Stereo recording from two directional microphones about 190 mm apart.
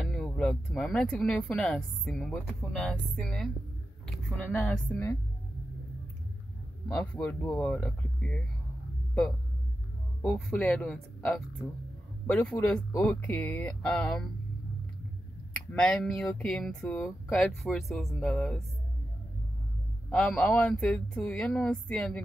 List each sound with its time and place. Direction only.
0.0 s speech: centre (ahead or behind)
7.2 s speech: 15° left (ahead or behind)
7.5 s speech: 5° left (ahead or behind)
10.2 s speech: 5° left (ahead or behind)
15.7 s speech: 5° left (ahead or behind)
20.1 s speech: 5° left (ahead or behind)